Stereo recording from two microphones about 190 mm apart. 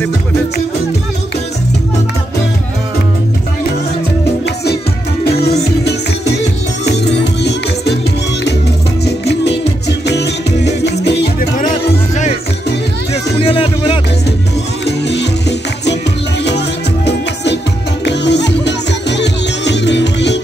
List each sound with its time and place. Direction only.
5.2 s music: 55° left (ahead or behind)
7.4 s music: 60° left (ahead or behind)
9.0 s music: 60° left (ahead or behind)
13.1 s music: 30° left (ahead or behind)
14.9 s music: 65° left (ahead or behind)